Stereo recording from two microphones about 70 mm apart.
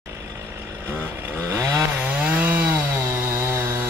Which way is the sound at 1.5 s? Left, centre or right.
Right.